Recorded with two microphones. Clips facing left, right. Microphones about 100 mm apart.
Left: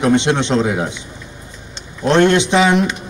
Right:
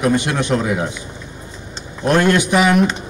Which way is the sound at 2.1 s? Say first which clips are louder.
Left 2 dB; 25° left (ahead or behind).